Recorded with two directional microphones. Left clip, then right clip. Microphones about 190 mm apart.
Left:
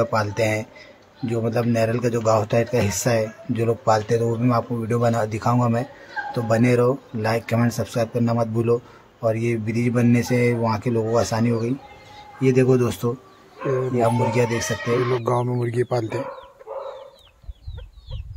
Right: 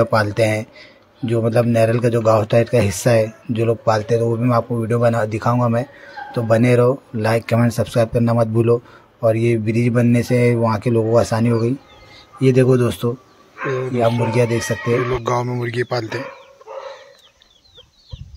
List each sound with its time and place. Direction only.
0.0 s a man's voice: 20° right (ahead or behind)
15.2 s speech: centre (ahead or behind)
16.7 s chicken: 10° right (ahead or behind)